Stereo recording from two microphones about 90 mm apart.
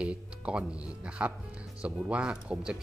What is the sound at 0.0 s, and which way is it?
Speech, 10° right (ahead or behind).